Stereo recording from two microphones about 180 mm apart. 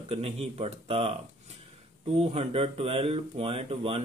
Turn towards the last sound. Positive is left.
turn(degrees=-30)  # may be behind; listen again after turning